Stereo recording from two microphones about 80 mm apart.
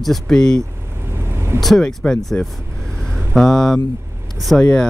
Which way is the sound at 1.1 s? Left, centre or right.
Right.